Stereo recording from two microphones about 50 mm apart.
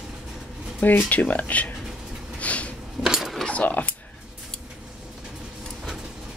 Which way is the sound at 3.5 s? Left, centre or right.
Left.